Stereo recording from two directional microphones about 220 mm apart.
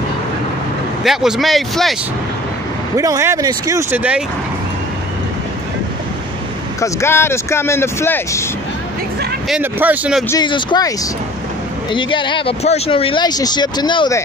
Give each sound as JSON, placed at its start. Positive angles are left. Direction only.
{"t": 1.0, "sound": "speech", "side_deg": 0}
{"t": 3.0, "sound": "speech", "side_deg": -15}
{"t": 6.8, "sound": "speech", "side_deg": 10}
{"t": 9.5, "sound": "speech", "side_deg": -10}
{"t": 10.3, "sound": "speech", "side_deg": 20}
{"t": 11.9, "sound": "speech", "side_deg": 20}